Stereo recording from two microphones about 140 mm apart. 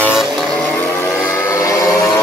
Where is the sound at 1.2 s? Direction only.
20° left (ahead or behind).